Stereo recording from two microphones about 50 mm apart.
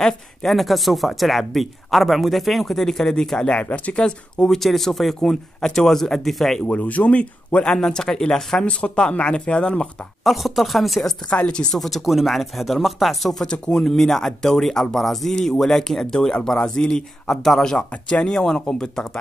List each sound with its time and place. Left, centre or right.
0.0 s speech: centre
3.6 s speech: left
4.5 s speech: centre
6.7 s speech: left
7.7 s speech: centre
8.6 s speech: left
10.2 s speech: centre
11.2 s speech: left
11.8 s speech: centre
13.3 s speech: centre